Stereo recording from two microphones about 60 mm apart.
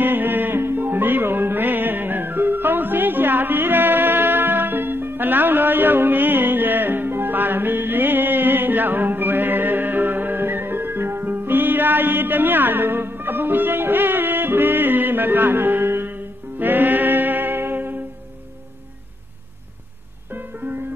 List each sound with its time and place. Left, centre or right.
0.0 s music: right
20.2 s music: right